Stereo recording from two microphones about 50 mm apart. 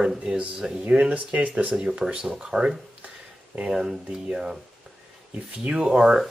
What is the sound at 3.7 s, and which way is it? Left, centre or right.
Speech, centre.